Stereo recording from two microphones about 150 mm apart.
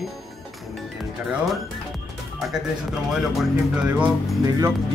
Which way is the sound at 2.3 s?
Centre (ahead or behind).